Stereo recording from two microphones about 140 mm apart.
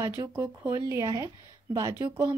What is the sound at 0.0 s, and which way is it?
Speech, 20° right (ahead or behind).